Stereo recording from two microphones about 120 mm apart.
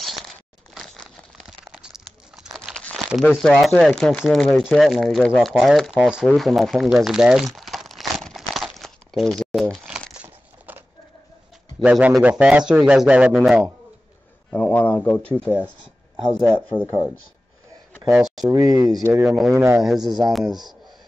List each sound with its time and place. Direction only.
0.0 s a sound: centre (ahead or behind)
3.1 s speech: 5° right (ahead or behind)
5.5 s a sound: centre (ahead or behind)
10.1 s crumpling: 15° right (ahead or behind)
11.8 s a man's voice: 10° right (ahead or behind)
14.5 s speech: 15° left (ahead or behind)
16.5 s speech: 15° left (ahead or behind)
18.1 s speech: 5° right (ahead or behind)
18.5 s speech: 30° right (ahead or behind)
19.2 s speech: centre (ahead or behind)
19.5 s speech: 20° right (ahead or behind)
20.0 s speech: 35° right (ahead or behind)
20.3 s speech: centre (ahead or behind)